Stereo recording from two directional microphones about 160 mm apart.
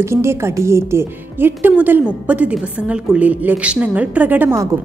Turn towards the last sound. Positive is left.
turn(degrees=-15)  # may be behind; listen again after turning